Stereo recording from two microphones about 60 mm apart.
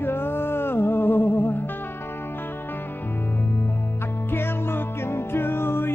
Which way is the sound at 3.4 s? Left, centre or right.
Left.